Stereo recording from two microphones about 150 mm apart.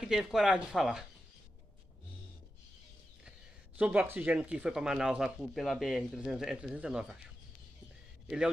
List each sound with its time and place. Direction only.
0.0 s speech: 5° right (ahead or behind)
3.3 s speech: 5° right (ahead or behind)